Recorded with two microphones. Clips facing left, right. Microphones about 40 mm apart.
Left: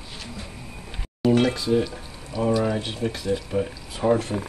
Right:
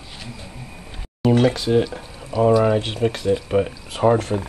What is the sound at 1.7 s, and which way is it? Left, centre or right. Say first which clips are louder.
Speech: right 4 dB; right.